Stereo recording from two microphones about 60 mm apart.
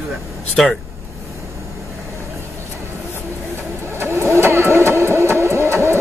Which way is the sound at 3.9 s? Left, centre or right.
Right.